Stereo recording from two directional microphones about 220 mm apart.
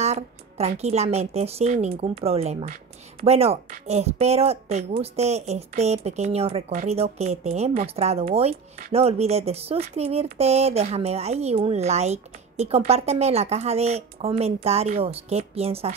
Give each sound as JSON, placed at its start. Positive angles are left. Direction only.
{"t": 0.0, "sound": "a woman's voice", "side_deg": -30}